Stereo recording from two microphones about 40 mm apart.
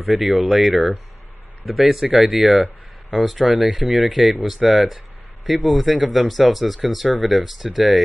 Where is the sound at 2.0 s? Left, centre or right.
Centre.